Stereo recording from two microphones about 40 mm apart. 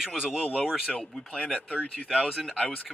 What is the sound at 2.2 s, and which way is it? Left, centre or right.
Speech, centre.